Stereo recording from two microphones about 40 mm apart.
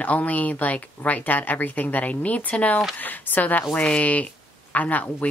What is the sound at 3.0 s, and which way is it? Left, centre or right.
Speech, left.